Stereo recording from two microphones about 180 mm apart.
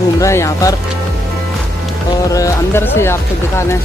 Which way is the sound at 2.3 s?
15° left (ahead or behind).